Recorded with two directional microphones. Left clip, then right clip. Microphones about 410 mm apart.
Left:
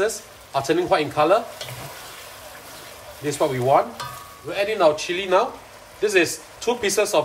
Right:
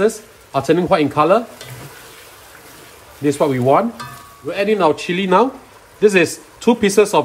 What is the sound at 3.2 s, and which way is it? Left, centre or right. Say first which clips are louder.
Speech: right 6 dB; centre.